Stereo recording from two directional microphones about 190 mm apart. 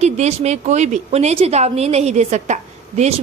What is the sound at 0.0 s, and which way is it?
A woman's voice, 35° right (ahead or behind).